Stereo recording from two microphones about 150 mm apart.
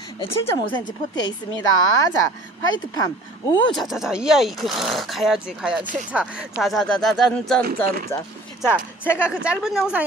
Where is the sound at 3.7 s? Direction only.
Centre (ahead or behind).